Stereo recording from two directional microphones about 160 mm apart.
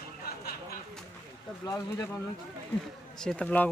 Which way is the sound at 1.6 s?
20° left (ahead or behind).